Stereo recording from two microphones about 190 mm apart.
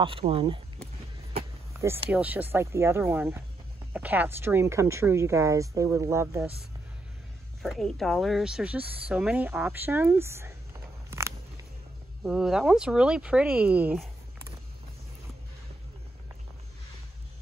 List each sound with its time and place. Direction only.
0.0 s speech: 30° right (ahead or behind)
1.8 s speech: 10° right (ahead or behind)
7.6 s speech: centre (ahead or behind)
11.1 s a sound: 15° right (ahead or behind)
12.2 s speech: 5° right (ahead or behind)